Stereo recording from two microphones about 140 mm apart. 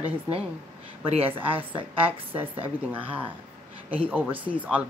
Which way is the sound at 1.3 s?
10° right (ahead or behind).